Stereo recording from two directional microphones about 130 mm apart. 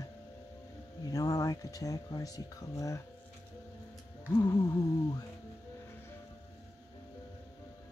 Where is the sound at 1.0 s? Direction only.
30° left (ahead or behind).